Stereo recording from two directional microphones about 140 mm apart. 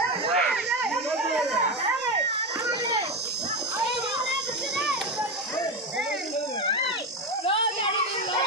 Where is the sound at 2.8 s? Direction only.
45° right (ahead or behind).